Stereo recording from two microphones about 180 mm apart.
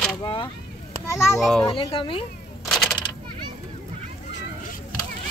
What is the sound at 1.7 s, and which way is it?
Speech, 30° left (ahead or behind).